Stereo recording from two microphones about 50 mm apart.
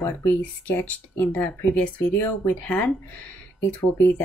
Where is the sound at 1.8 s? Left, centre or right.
Left.